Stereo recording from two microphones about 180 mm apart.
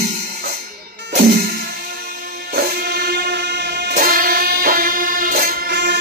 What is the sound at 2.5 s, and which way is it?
Music, 60° right (ahead or behind).